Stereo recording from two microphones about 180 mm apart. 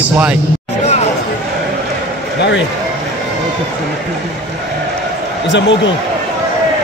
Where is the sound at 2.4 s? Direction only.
80° left.